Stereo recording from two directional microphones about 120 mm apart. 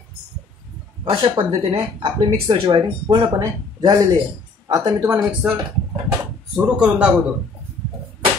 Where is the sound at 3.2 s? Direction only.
30° right (ahead or behind).